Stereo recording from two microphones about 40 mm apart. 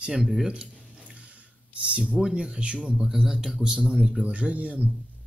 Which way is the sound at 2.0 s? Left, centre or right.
Centre.